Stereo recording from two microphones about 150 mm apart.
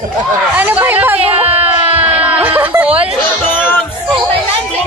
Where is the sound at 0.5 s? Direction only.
10° right (ahead or behind).